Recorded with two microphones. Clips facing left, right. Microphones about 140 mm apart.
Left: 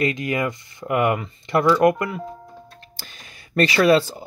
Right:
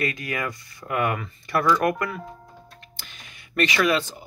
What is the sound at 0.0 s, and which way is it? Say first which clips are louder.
Speech: left 6 dB; 20° left (ahead or behind).